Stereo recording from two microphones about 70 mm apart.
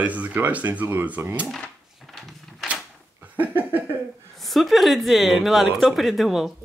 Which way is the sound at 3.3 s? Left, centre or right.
Right.